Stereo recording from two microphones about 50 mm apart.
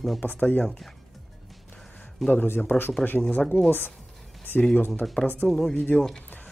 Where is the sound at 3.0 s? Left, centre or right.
Centre.